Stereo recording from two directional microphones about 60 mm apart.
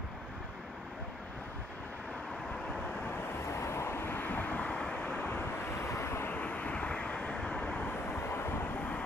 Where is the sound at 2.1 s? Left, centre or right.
Centre.